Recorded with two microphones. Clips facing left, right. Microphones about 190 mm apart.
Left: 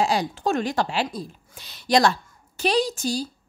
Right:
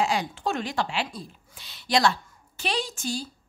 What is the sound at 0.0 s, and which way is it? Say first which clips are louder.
A woman's voice: left 3 dB; 35° left (ahead or behind).